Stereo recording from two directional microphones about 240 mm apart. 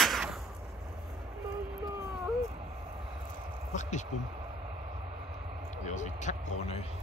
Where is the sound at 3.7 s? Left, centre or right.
Left.